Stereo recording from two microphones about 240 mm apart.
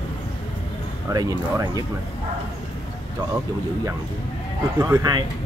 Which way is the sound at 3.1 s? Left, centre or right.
Centre.